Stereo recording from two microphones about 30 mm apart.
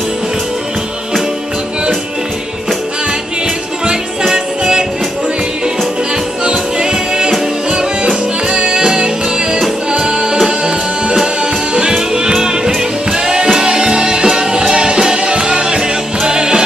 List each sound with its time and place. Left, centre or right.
3.9 s music: right
6.4 s music: right
11.9 s music: right